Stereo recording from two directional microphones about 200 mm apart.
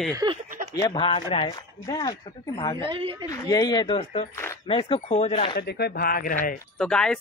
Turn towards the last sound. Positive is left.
turn(degrees=5)  # may be behind; listen again after turning